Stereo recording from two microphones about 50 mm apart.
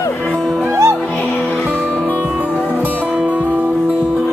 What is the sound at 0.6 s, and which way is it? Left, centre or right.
Music, right.